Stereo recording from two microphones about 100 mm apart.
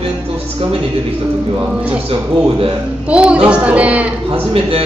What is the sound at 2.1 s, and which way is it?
Speech, 65° right (ahead or behind).